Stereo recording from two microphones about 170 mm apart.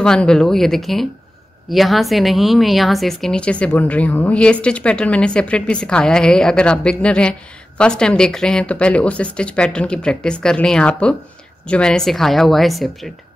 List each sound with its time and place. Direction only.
0.0 s a woman's voice: 5° left (ahead or behind)